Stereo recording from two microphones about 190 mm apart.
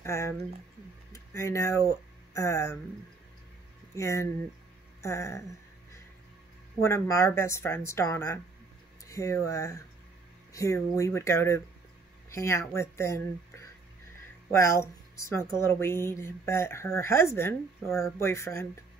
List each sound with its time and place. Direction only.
0.0 s a woman's voice: 15° left (ahead or behind)
3.9 s a woman's voice: 15° left (ahead or behind)
6.8 s a woman's voice: 15° left (ahead or behind)